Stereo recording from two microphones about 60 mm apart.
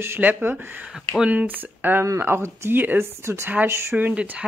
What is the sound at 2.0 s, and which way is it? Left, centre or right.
Speech, right.